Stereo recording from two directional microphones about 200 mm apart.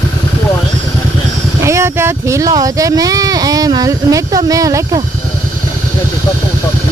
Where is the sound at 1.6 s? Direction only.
15° right (ahead or behind).